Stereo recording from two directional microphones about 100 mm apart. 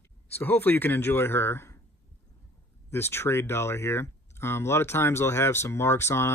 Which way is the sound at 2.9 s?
25° left (ahead or behind).